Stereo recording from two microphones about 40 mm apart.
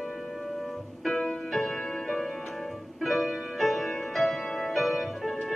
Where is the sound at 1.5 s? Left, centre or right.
Centre.